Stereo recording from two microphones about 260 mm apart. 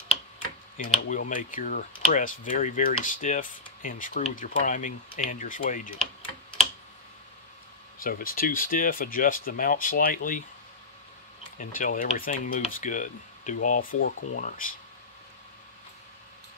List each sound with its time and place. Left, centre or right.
0.8 s speech: left
8.0 s speech: left
11.5 s speech: left